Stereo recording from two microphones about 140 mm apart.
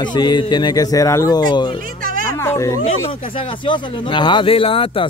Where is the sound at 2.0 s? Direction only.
85° right.